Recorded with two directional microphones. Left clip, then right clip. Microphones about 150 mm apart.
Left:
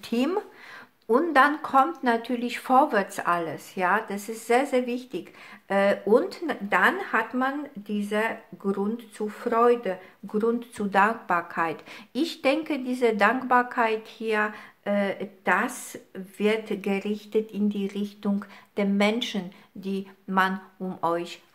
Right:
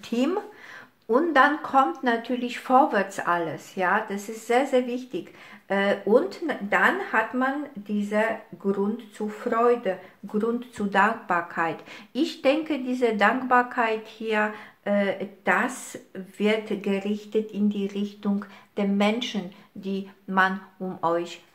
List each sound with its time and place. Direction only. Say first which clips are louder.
0.0 s speech: even; 30° left (ahead or behind)